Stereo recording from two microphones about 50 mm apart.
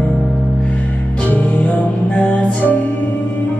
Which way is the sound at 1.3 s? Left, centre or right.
Left.